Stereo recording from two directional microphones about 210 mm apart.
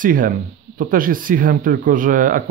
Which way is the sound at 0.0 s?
40° right (ahead or behind).